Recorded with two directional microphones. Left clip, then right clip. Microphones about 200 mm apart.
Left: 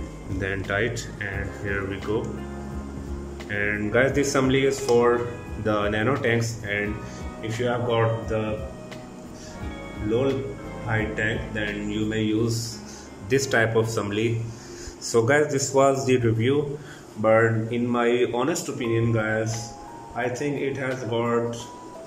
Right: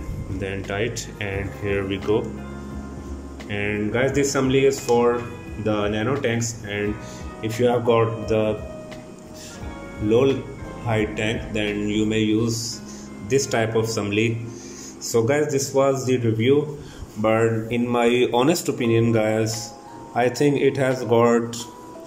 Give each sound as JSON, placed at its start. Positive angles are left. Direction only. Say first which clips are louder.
{"t": 0.4, "sound": "speech", "louder": "left 1 dB", "side_deg": -5}
{"t": 3.4, "sound": "speech", "louder": "even", "side_deg": -10}
{"t": 7.4, "sound": "speech", "louder": "right 6 dB", "side_deg": -20}
{"t": 10.9, "sound": "speech", "louder": "right 2 dB", "side_deg": -15}